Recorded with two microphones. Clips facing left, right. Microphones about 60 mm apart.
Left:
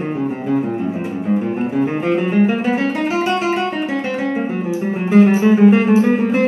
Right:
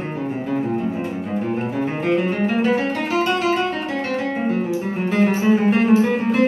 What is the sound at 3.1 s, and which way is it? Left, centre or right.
Guitar, left.